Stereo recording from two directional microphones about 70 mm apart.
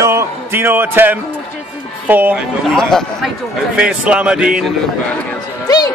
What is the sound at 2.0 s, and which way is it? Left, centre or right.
Speech, right.